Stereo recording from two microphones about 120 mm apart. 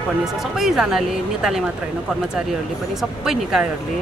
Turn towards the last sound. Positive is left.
turn(degrees=-5)  # may be behind; listen again after turning